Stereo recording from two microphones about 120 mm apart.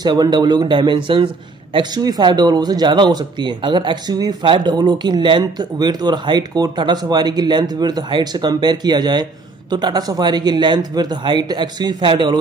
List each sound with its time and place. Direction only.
0.0 s a man's voice: 40° right (ahead or behind)